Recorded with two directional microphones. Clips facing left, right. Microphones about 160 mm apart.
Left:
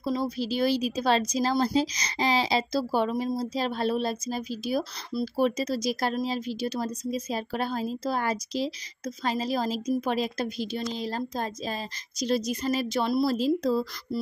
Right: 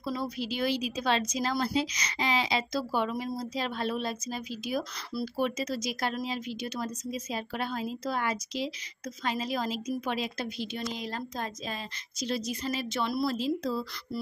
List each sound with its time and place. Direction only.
0.0 s a woman's voice: 20° left (ahead or behind)
0.4 s speech: 35° left (ahead or behind)
14.1 s music: 30° left (ahead or behind)